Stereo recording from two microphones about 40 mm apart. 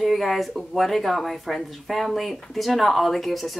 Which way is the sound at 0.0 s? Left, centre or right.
Centre.